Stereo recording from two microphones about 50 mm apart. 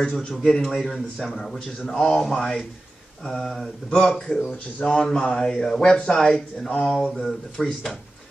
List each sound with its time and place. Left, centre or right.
0.0 s a man's voice: centre
0.7 s speech: centre